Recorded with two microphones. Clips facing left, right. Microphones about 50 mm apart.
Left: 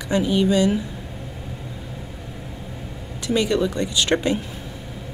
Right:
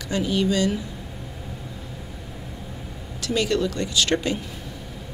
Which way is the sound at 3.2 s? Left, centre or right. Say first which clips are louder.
Left 2 dB; left.